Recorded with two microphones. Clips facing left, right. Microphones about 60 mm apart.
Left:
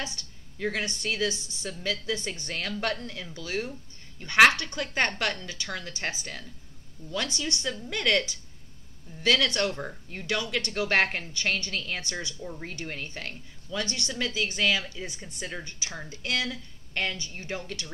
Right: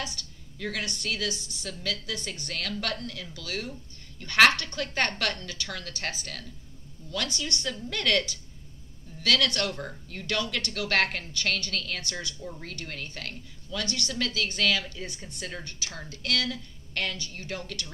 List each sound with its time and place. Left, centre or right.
0.0 s a woman's voice: left
9.2 s a woman's voice: left
12.4 s a woman's voice: centre
12.6 s a woman's voice: left